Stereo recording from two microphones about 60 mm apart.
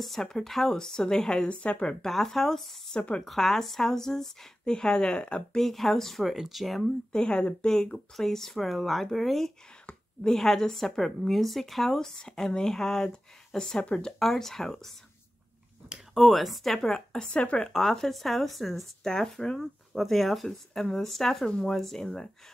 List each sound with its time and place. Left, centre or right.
0.0 s a woman's voice: centre
2.0 s speech: centre
2.9 s a woman's voice: centre
3.3 s a woman's voice: centre
5.6 s speech: centre
7.1 s a woman's voice: centre
14.2 s speech: centre
16.2 s speech: centre
17.7 s speech: centre
19.6 s a woman's voice: centre